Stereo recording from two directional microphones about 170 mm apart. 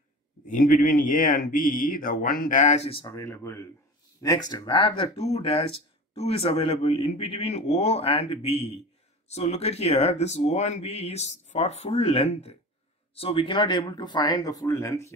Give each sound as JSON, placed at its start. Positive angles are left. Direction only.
{"t": 0.5, "sound": "a man's voice", "side_deg": 50}
{"t": 3.2, "sound": "speech", "side_deg": 15}